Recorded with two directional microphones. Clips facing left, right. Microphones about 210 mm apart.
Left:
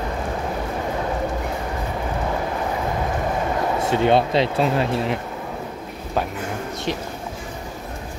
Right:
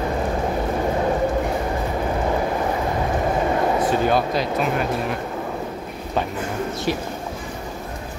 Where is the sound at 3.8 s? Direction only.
25° left (ahead or behind).